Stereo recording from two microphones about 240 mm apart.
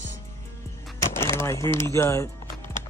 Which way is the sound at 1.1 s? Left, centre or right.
Centre.